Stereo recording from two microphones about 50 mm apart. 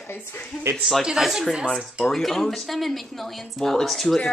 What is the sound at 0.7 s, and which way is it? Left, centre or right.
Speech, centre.